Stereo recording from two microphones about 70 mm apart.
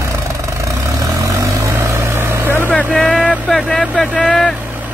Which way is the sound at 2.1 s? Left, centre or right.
Right.